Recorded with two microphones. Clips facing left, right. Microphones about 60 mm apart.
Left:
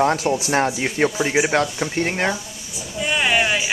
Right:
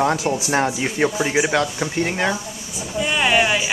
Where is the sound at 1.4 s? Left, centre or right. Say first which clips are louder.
Even; left.